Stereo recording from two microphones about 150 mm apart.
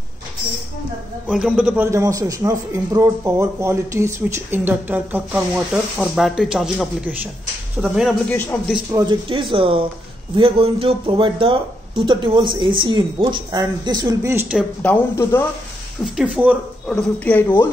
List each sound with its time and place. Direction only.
1.2 s a man's voice: 5° right (ahead or behind)
1.9 s speech: 20° right (ahead or behind); by 8.2 s 5° right (ahead or behind)
8.3 s speech: 10° left (ahead or behind)
9.3 s speech: 35° right (ahead or behind)
14.8 s speech: 15° left (ahead or behind)
16.2 s a man's voice: 10° right (ahead or behind)
16.8 s speech: 5° left (ahead or behind)